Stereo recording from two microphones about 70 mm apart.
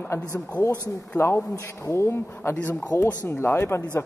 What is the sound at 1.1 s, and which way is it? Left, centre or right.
A man's voice, left.